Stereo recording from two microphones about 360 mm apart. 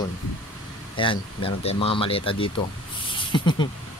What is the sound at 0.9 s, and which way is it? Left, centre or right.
Speech, centre.